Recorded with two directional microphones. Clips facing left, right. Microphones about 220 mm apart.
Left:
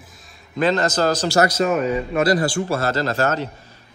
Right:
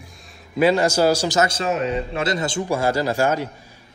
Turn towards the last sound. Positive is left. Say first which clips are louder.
# right 1 dB
turn(degrees=-10)  # may be behind; listen again after turning